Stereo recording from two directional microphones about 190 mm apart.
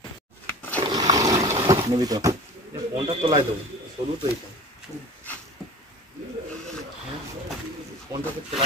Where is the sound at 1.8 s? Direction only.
20° right (ahead or behind).